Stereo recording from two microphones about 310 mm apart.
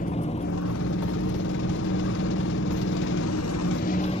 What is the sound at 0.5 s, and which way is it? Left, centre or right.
Vehicle, left.